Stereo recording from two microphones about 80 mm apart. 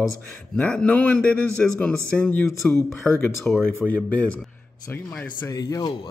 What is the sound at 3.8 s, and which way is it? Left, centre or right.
Speech, centre.